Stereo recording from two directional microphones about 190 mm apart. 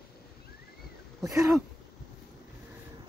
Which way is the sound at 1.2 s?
15° right (ahead or behind).